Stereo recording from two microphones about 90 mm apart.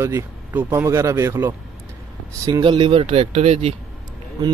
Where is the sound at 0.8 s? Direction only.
35° right (ahead or behind).